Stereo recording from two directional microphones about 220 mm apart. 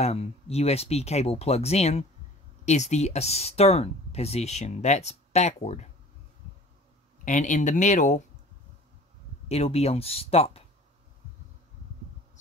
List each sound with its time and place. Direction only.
0.0 s speech: 30° left (ahead or behind)
7.2 s speech: 35° left (ahead or behind)
9.5 s speech: 30° left (ahead or behind)